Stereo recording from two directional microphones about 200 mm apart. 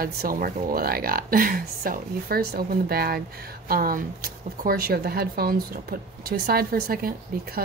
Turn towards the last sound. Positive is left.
turn(degrees=-50)  # may be behind; listen again after turning